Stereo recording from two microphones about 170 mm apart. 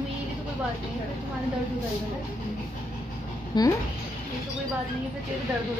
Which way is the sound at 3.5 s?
25° left (ahead or behind).